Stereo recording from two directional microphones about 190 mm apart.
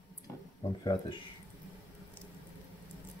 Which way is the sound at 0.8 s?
25° left (ahead or behind).